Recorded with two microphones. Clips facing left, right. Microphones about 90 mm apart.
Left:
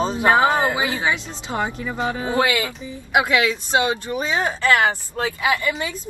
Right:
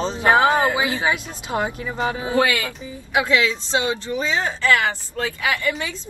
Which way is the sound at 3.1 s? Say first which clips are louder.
Left 1 dB; 20° left (ahead or behind).